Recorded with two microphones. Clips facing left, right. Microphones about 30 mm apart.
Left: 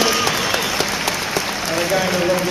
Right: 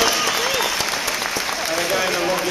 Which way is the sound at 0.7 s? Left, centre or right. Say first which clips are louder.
Left 2 dB; left.